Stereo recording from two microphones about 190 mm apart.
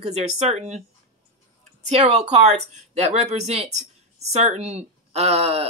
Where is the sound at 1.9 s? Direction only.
35° right (ahead or behind).